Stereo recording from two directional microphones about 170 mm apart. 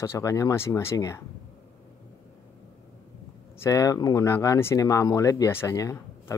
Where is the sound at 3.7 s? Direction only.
20° left (ahead or behind).